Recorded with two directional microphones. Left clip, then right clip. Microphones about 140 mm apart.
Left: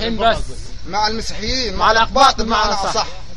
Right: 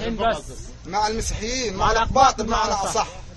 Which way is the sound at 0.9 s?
20° right (ahead or behind).